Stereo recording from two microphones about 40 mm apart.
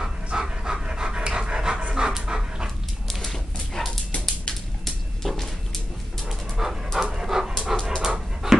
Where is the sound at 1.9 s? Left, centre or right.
Centre.